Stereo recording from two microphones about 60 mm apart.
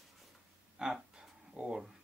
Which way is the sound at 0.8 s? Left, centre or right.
Centre.